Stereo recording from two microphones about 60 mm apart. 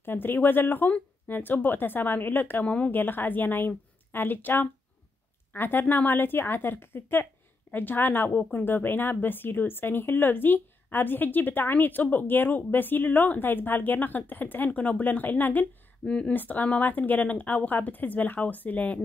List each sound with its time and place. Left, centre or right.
0.0 s speech: left
2.6 s speech: left
2.9 s speech: left
16.1 s speech: centre
16.3 s speech: left